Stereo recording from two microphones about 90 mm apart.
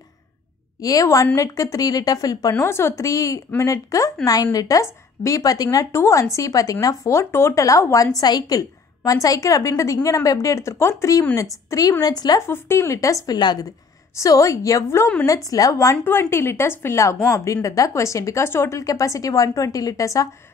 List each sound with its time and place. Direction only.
0.7 s a woman's voice: 40° left (ahead or behind)
2.6 s a woman's voice: 30° left (ahead or behind)
8.2 s a woman's voice: 50° left (ahead or behind)
12.0 s a woman's voice: 45° left (ahead or behind)
12.4 s a woman's voice: 30° left (ahead or behind); by 13.7 s 50° left (ahead or behind)
14.1 s a woman's voice: 40° left (ahead or behind)